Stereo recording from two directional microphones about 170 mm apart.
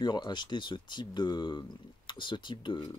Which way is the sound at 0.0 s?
25° left (ahead or behind).